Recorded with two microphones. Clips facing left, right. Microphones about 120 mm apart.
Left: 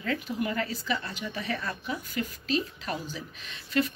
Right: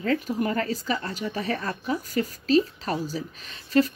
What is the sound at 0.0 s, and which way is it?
Speech, 40° right (ahead or behind).